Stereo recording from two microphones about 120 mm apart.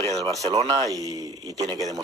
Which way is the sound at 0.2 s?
30° right (ahead or behind).